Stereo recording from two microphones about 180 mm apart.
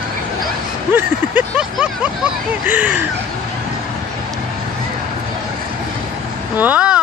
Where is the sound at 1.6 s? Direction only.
5° right (ahead or behind).